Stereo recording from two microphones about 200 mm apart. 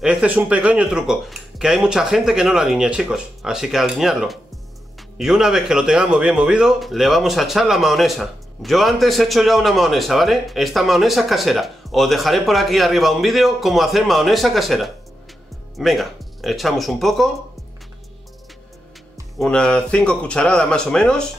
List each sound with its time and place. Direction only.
0.0 s speech: 5° right (ahead or behind)
19.3 s speech: 5° left (ahead or behind)